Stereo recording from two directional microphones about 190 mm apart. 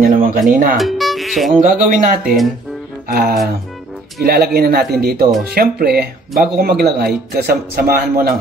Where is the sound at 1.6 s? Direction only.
45° right (ahead or behind).